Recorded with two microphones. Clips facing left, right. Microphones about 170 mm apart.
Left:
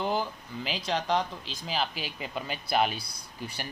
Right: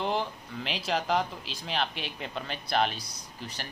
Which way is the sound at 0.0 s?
Centre (ahead or behind).